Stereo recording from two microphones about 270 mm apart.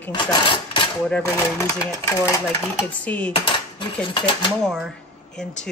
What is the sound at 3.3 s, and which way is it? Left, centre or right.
Cutlery, centre.